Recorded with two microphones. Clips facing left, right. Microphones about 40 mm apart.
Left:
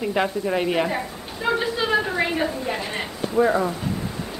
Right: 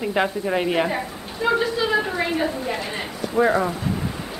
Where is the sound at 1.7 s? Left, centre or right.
Centre.